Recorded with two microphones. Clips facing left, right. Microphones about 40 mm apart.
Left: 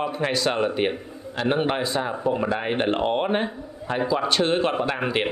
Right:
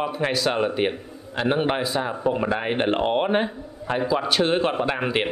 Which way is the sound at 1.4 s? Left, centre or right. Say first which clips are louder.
Right 1 dB; centre.